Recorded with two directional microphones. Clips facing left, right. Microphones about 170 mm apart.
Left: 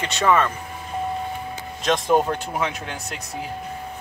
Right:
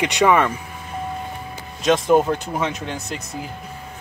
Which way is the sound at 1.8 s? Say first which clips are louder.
Right 4 dB; 5° right (ahead or behind).